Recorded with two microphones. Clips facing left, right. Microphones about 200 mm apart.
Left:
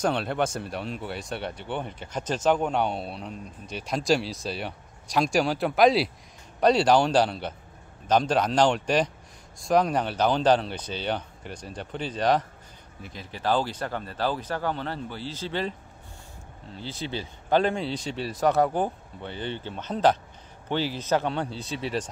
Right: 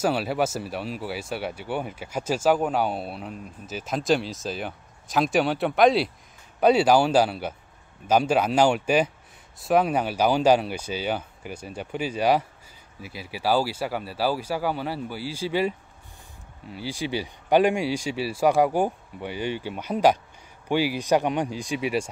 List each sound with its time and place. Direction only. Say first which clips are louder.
0.0 s speech: right 2 dB; 5° right (ahead or behind)
16.7 s speech: right 4 dB; 10° right (ahead or behind)